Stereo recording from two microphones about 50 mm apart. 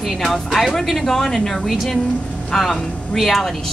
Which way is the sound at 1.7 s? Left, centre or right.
Centre.